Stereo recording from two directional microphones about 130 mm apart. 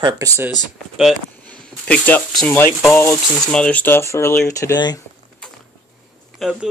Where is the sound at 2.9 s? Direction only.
15° left (ahead or behind).